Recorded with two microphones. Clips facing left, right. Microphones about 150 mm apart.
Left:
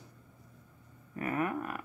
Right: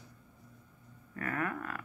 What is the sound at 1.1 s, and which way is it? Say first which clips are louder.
Speech: left 3 dB; 20° left (ahead or behind).